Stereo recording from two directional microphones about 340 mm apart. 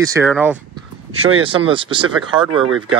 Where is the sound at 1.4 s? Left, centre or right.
Centre.